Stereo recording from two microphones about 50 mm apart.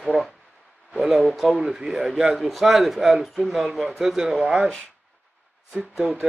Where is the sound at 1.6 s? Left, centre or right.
Centre.